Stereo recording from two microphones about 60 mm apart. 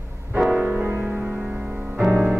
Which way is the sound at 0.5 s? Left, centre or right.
Centre.